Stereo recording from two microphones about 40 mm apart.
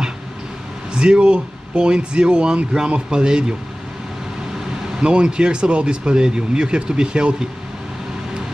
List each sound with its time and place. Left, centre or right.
0.9 s speech: right
5.0 s speech: right